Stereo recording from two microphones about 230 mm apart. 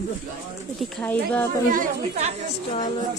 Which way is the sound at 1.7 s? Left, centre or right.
Right.